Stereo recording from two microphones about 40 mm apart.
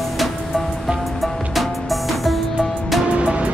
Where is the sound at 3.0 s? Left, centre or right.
Right.